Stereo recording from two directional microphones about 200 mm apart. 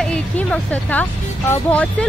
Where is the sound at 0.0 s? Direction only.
5° left (ahead or behind).